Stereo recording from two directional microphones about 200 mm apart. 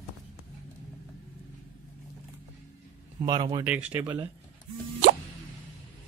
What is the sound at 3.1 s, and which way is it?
Speech, 20° right (ahead or behind).